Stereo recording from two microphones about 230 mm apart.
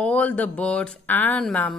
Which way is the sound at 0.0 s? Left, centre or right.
Centre.